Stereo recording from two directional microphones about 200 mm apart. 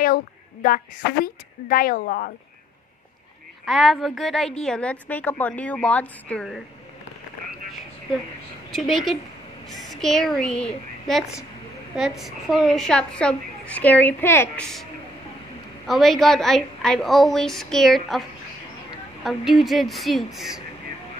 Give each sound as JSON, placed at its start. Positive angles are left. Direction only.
{"t": 0.0, "sound": "a woman's voice", "side_deg": 45}
{"t": 3.6, "sound": "a woman's voice", "side_deg": 0}
{"t": 8.7, "sound": "a woman's voice", "side_deg": 0}
{"t": 15.9, "sound": "a woman's voice", "side_deg": 0}
{"t": 19.2, "sound": "a woman's voice", "side_deg": 0}